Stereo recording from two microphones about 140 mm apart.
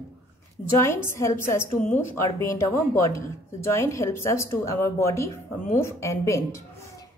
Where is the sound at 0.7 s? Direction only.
20° left (ahead or behind).